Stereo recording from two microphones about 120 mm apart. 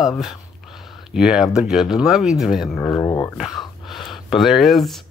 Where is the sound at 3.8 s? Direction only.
Centre (ahead or behind).